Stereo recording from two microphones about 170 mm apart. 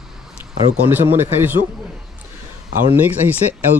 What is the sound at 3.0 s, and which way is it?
Speech, 10° right (ahead or behind).